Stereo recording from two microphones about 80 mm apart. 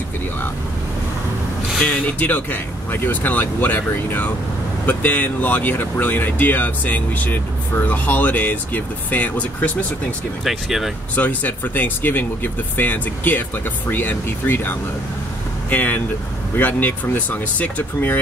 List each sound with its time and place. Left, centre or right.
1.8 s speech: centre
10.4 s speech: centre
11.1 s speech: left